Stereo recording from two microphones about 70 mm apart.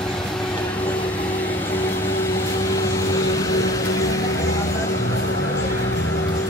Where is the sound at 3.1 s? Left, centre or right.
Left.